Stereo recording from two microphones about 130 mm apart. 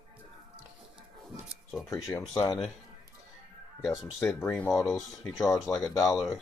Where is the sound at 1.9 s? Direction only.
25° left (ahead or behind).